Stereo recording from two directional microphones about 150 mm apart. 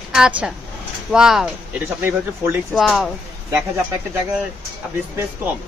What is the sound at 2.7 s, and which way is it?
Speech, centre (ahead or behind).